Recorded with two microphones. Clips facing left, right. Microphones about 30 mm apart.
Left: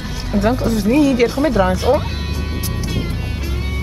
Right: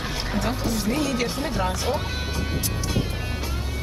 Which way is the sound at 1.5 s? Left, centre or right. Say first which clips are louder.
Left 10 dB; left.